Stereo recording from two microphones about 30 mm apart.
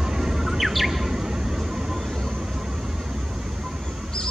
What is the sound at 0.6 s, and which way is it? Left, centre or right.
Bird, centre.